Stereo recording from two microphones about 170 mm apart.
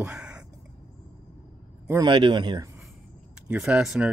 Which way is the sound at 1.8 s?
25° right (ahead or behind).